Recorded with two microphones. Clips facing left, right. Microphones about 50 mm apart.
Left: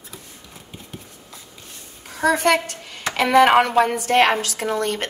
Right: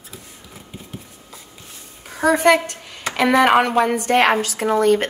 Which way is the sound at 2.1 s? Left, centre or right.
Centre.